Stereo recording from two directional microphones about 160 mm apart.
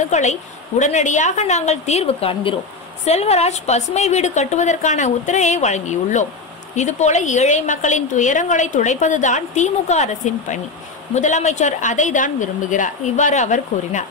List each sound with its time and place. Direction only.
0.1 s a woman's voice: 45° left (ahead or behind)